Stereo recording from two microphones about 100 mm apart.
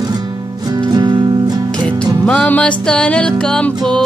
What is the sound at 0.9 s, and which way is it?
Music, 50° right (ahead or behind).